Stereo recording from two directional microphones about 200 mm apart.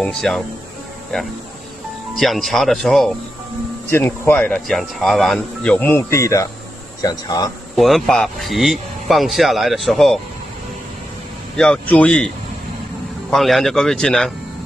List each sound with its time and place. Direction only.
0.0 s speech: centre (ahead or behind); by 7.5 s 20° left (ahead or behind)
7.7 s speech: centre (ahead or behind)
11.5 s speech: 5° left (ahead or behind)
13.3 s speech: centre (ahead or behind)